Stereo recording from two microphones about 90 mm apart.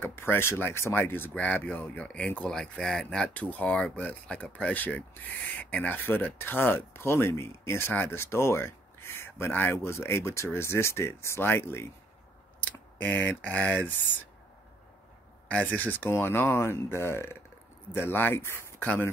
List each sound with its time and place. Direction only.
0.0 s speech: 25° left (ahead or behind)
13.0 s a sound: 15° left (ahead or behind)
15.4 s speech: 15° left (ahead or behind)